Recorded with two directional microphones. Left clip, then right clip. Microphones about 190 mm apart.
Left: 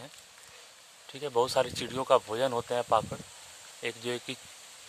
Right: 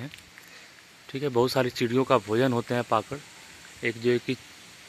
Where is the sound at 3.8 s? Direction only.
20° left (ahead or behind).